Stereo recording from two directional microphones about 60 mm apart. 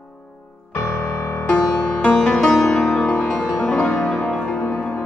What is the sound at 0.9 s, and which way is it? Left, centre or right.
Music, left.